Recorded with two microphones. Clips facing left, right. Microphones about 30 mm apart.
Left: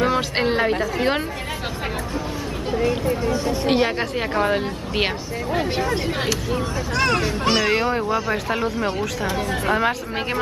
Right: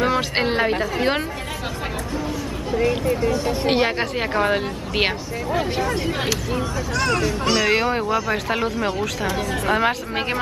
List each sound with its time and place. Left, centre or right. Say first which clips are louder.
0.0 s speech: even; centre
3.6 s a woman's voice: even; centre
5.5 s speech: even; centre
7.0 s speech: left 1 dB; left
7.7 s a woman's voice: right 1 dB; centre
9.7 s a woman's voice: right 1 dB; centre